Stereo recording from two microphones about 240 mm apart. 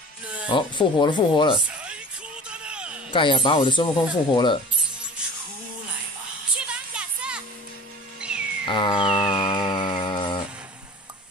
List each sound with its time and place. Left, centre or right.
0.5 s speech: centre
1.7 s music: centre
2.5 s a sound: centre
3.1 s speech: centre
5.2 s music: centre
6.5 s music: centre
8.2 s cat: centre
8.6 s a sound: centre